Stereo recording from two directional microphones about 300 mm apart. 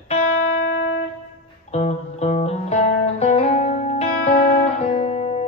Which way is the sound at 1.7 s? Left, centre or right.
Left.